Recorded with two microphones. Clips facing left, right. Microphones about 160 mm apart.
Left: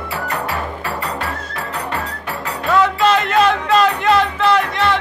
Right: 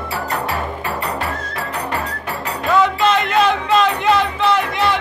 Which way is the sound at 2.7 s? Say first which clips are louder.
Left 1 dB; centre (ahead or behind).